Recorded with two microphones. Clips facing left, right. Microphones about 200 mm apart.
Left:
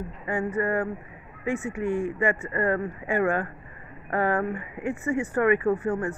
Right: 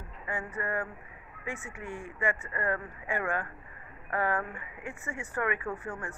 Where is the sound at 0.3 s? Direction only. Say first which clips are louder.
Left 9 dB; 35° left (ahead or behind).